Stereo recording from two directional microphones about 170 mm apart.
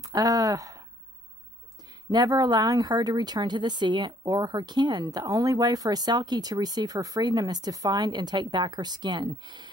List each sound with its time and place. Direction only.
0.0 s speech: 20° right (ahead or behind)
2.0 s speech: 20° right (ahead or behind)